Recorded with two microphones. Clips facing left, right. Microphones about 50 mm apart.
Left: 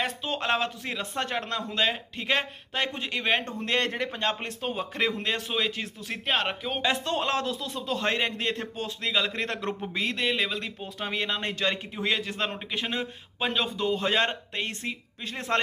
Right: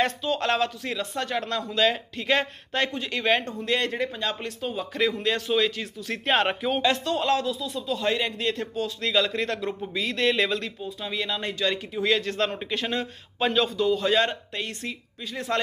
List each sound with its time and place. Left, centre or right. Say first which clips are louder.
0.4 s a man's voice: even; left
3.4 s a man's voice: right 1 dB; left
6.2 s speech: right 5 dB; centre
7.1 s speech: right 3 dB; left
7.4 s a man's voice: right 2 dB; left
9.0 s a man's voice: right 3 dB; centre
9.4 s a man's voice: right 2 dB; left
10.1 s a man's voice: right 7 dB; centre
10.8 s a man's voice: even; left
11.2 s a man's voice: right 2 dB; left; by 13.7 s centre
13.7 s speech: right 1 dB; left